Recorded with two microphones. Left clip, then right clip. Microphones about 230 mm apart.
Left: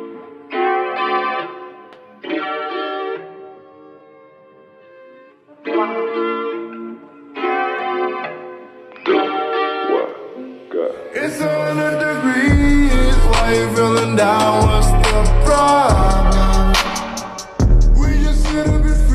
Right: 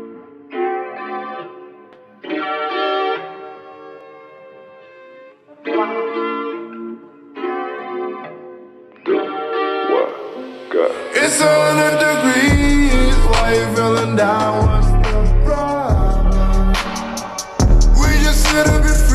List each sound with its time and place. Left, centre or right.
0.5 s music: left
2.2 s music: centre; by 3.5 s right
5.6 s music: centre
7.3 s music: left
9.0 s music: left; by 19.0 s right